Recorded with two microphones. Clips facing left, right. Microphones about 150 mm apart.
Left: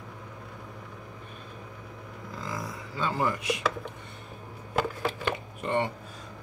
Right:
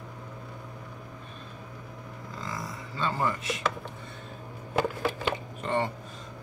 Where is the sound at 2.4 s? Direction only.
5° left (ahead or behind).